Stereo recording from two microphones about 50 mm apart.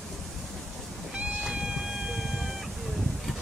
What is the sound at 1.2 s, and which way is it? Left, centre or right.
Cat, centre.